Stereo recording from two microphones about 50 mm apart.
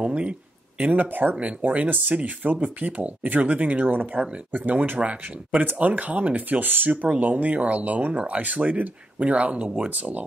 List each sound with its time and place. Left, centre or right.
0.0 s speech: right